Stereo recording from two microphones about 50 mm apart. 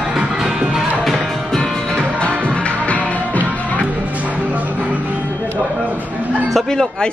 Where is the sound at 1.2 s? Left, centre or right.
Centre.